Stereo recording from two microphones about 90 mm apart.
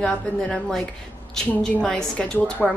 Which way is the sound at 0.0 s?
5° left (ahead or behind).